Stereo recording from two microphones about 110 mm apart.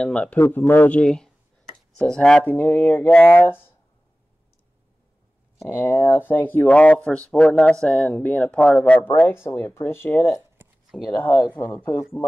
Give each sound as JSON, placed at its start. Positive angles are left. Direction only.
{"t": 0.0, "sound": "speech", "side_deg": 10}
{"t": 2.5, "sound": "speech", "side_deg": 20}
{"t": 5.7, "sound": "speech", "side_deg": 20}
{"t": 9.5, "sound": "speech", "side_deg": 25}